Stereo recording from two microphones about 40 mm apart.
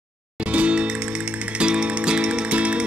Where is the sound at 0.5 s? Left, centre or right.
Right.